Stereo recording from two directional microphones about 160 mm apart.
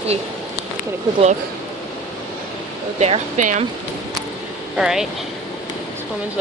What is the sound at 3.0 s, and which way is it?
Speech, 45° right (ahead or behind).